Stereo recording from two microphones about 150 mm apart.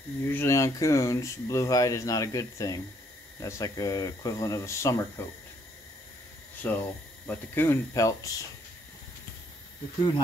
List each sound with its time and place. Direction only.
0.2 s speech: 15° left (ahead or behind)
6.6 s speech: 10° left (ahead or behind)